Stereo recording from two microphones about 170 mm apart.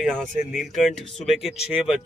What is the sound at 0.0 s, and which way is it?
Speech, centre (ahead or behind).